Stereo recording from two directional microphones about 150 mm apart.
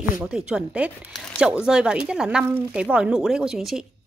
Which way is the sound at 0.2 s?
5° right (ahead or behind).